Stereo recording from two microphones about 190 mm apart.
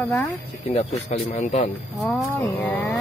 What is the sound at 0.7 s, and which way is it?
A man's voice, 35° left (ahead or behind).